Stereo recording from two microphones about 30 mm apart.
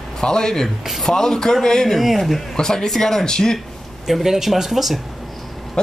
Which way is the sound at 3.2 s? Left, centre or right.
Left.